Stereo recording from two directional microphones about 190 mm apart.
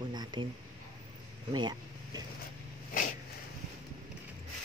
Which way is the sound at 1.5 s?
25° right (ahead or behind).